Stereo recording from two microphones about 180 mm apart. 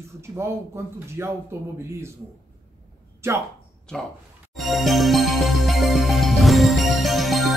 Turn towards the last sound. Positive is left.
turn(degrees=0)  # may be behind; listen again after turning